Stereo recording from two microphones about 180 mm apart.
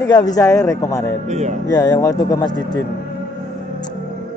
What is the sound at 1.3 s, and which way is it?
Speech, 40° right (ahead or behind).